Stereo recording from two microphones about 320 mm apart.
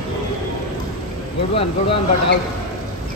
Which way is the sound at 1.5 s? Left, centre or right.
Centre.